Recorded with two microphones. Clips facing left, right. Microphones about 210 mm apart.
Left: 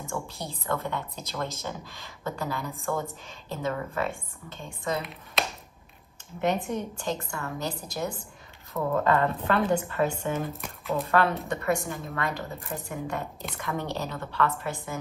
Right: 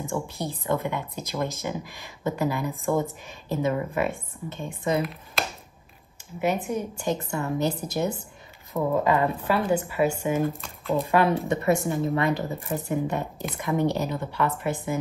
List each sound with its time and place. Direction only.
0.0 s speech: 15° right (ahead or behind)
5.4 s a sound: centre (ahead or behind)
6.4 s speech: 5° right (ahead or behind)
7.2 s a woman's voice: 25° right (ahead or behind)